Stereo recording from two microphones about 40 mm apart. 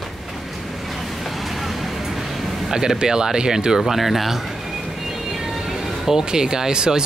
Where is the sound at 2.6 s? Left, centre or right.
Centre.